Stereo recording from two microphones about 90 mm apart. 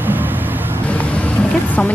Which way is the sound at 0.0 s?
20° right (ahead or behind).